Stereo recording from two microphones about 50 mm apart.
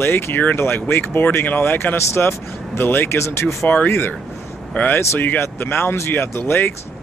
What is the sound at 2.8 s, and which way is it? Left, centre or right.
Speech, left.